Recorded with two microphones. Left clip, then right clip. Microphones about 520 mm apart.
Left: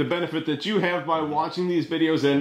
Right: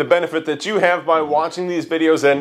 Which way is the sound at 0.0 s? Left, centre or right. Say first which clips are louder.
Right 9 dB; right.